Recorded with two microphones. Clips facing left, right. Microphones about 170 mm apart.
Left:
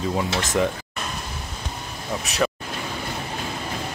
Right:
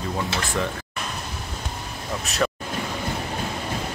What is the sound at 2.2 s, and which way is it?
Speech, centre (ahead or behind).